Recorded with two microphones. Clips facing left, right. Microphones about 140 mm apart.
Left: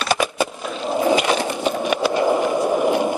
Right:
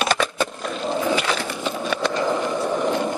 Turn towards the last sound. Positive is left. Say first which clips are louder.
# left 4 dB
turn(degrees=10)  # may be behind; listen again after turning